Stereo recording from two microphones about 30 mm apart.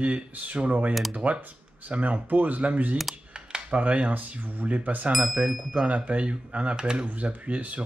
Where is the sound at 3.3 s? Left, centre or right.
Right.